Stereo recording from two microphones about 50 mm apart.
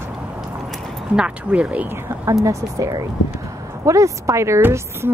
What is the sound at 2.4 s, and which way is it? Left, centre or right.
A woman's voice, right.